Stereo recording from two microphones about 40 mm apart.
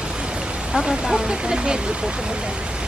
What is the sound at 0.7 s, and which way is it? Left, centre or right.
Speech, centre.